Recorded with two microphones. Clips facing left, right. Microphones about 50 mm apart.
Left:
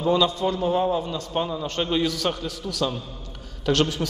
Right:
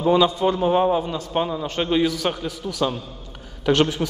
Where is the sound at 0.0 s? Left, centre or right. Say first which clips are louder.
Right 4 dB; centre.